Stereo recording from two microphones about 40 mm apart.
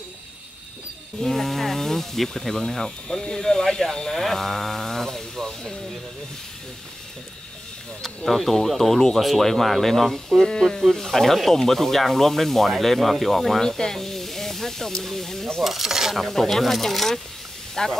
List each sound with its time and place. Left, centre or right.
1.2 s speech: centre
4.2 s a sound: centre
8.0 s speech: centre
10.4 s speech: centre
15.6 s speech: centre
16.2 s speech: centre